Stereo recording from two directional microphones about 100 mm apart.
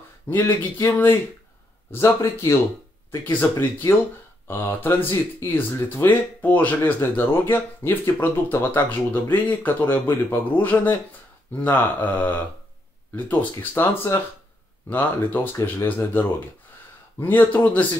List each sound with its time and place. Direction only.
0.3 s speech: 20° left (ahead or behind)
11.6 s mantra: 15° left (ahead or behind)
13.1 s speech: 15° left (ahead or behind)
14.9 s mantra: 20° left (ahead or behind)
15.6 s speech: 20° left (ahead or behind)
17.2 s mantra: 20° left (ahead or behind)